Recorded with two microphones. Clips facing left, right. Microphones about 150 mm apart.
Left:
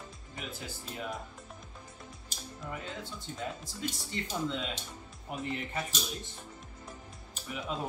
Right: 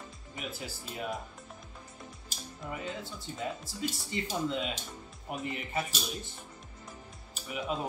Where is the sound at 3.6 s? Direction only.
5° right (ahead or behind).